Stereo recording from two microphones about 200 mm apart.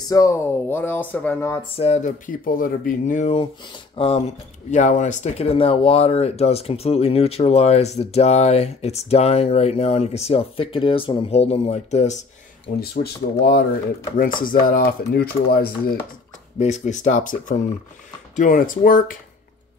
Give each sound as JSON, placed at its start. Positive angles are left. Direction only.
{"t": 0.1, "sound": "speech", "side_deg": 15}
{"t": 1.8, "sound": "speech", "side_deg": 35}
{"t": 14.4, "sound": "chopping", "side_deg": 45}
{"t": 16.5, "sound": "speech", "side_deg": 35}
{"t": 18.3, "sound": "chopping", "side_deg": 40}